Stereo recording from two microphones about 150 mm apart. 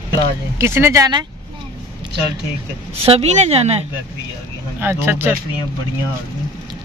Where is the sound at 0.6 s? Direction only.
15° right (ahead or behind).